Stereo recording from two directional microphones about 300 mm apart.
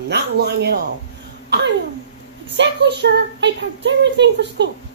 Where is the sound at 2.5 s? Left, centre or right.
Right.